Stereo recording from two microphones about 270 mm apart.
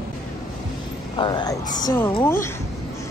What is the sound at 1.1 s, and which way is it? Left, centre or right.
A woman's voice, centre.